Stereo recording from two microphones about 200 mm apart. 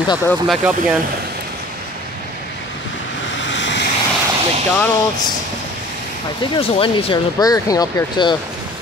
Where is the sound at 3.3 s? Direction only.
65° left (ahead or behind).